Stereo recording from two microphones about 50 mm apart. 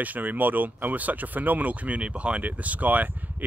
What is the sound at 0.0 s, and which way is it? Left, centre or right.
Speech, right.